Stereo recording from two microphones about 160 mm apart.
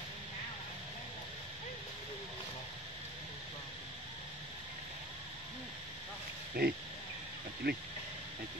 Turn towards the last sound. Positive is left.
turn(degrees=-75)  # may be behind; listen again after turning